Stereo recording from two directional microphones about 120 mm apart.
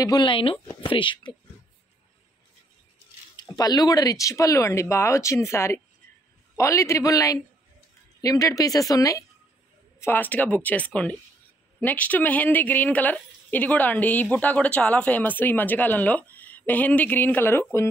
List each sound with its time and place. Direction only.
0.0 s speech: 40° left (ahead or behind)
3.4 s a woman's voice: 30° left (ahead or behind)